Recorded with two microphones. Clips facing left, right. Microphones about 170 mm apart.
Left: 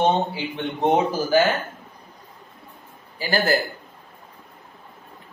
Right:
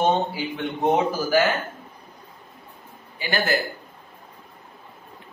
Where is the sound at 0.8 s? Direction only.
25° left (ahead or behind).